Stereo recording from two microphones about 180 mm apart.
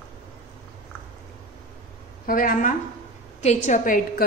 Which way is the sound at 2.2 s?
50° left (ahead or behind).